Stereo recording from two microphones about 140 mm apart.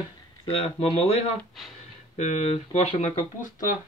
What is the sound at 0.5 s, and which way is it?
Speech, 45° left (ahead or behind).